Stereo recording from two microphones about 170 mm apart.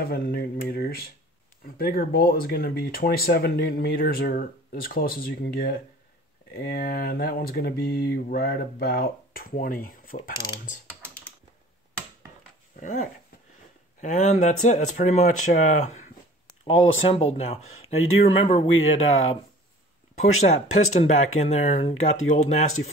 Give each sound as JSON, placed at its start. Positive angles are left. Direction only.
{"t": 0.0, "sound": "speech", "side_deg": 65}
{"t": 12.8, "sound": "speech", "side_deg": 55}
{"t": 16.6, "sound": "speech", "side_deg": 35}